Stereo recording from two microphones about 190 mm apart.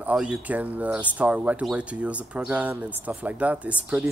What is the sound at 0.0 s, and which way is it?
Speech, 5° right (ahead or behind).